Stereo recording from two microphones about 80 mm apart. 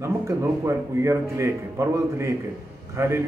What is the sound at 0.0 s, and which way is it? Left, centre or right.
A man's voice, right.